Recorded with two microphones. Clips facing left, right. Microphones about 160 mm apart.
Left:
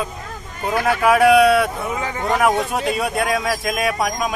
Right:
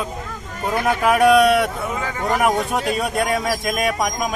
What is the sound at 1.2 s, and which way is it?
Speech, centre (ahead or behind).